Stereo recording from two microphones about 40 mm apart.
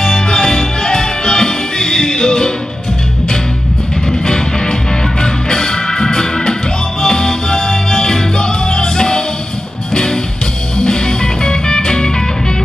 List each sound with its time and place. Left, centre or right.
0.0 s music: centre
4.1 s music: centre